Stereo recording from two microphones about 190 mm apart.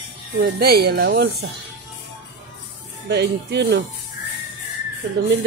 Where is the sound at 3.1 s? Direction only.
60° right (ahead or behind).